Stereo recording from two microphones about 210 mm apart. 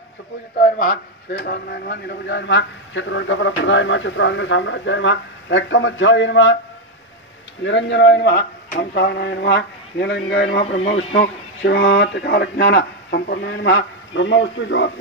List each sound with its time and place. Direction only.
0.6 s a man's voice: 40° left (ahead or behind); by 6.6 s 65° left (ahead or behind)
7.6 s a man's voice: 60° left (ahead or behind)
10.6 s a man's voice: 30° left (ahead or behind)
11.1 s a man's voice: 55° left (ahead or behind)